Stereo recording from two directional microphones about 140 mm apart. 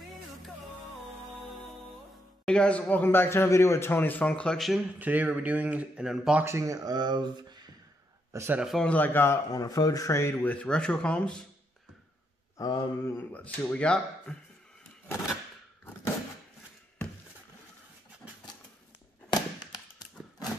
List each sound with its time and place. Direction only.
2.4 s a man's voice: 5° left (ahead or behind)
4.9 s speech: 10° right (ahead or behind)
6.4 s speech: 20° right (ahead or behind)
8.3 s speech: 20° right (ahead or behind)
8.5 s a man's voice: centre (ahead or behind)
8.8 s a man's voice: 10° left (ahead or behind)
12.5 s a man's voice: 25° left (ahead or behind); by 14.3 s 5° left (ahead or behind)
19.3 s thunk: 30° left (ahead or behind)